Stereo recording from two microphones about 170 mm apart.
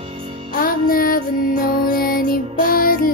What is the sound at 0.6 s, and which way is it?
Music, 55° left (ahead or behind).